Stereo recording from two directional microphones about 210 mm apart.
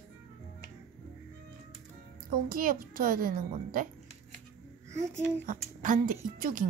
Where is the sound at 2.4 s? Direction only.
40° right (ahead or behind).